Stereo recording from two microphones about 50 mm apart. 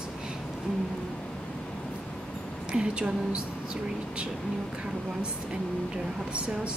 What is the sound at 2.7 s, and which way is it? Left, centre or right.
Speech, centre.